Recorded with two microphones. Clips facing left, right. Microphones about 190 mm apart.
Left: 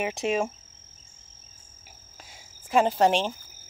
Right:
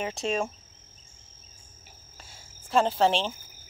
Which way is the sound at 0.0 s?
15° left (ahead or behind).